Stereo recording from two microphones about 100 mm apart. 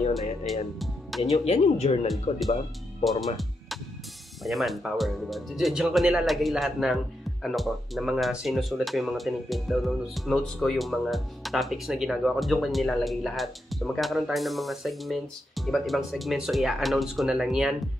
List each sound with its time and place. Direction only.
0.7 s music: centre (ahead or behind)
1.3 s speech: 90° left
3.0 s speech: centre (ahead or behind)
4.4 s speech: centre (ahead or behind)